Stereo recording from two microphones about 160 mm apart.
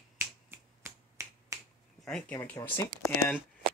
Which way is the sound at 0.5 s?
15° right (ahead or behind).